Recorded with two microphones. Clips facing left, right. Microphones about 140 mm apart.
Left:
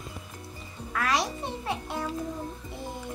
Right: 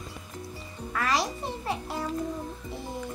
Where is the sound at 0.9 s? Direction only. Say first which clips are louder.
Even; centre (ahead or behind).